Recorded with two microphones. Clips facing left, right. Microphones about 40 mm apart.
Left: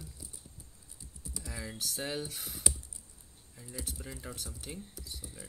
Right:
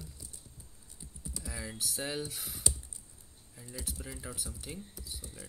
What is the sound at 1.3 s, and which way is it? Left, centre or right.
Speech, centre.